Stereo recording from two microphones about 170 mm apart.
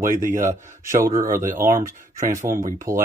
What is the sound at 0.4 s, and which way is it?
Speech, 15° right (ahead or behind).